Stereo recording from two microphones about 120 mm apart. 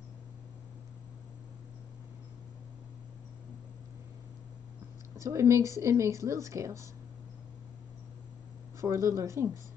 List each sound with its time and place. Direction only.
5.1 s speech: 25° right (ahead or behind)
8.8 s speech: 25° right (ahead or behind)